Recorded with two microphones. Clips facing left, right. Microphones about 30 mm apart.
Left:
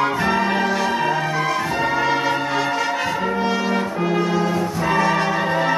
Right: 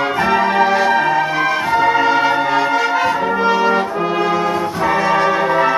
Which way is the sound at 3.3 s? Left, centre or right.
Right.